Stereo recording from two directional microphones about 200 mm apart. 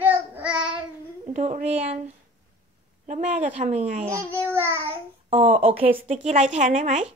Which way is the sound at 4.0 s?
15° right (ahead or behind).